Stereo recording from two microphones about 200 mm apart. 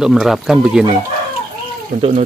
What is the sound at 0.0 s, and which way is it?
Speech, centre (ahead or behind).